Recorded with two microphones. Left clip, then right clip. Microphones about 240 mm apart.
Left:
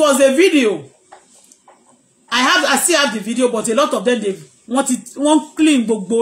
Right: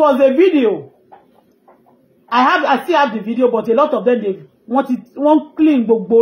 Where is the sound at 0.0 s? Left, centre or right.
Centre.